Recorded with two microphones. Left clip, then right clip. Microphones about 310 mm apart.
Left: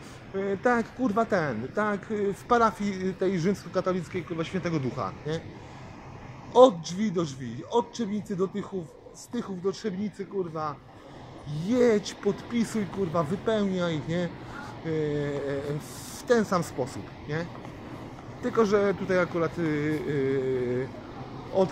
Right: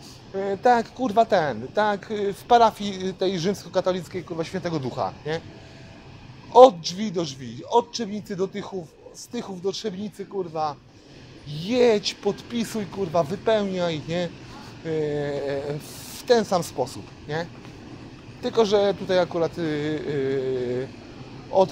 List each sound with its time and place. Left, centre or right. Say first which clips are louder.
0.4 s speech: right 6 dB; right
6.5 s speech: right 5 dB; right